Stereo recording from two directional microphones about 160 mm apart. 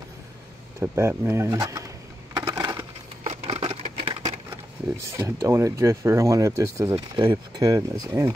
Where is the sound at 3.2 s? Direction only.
40° right (ahead or behind).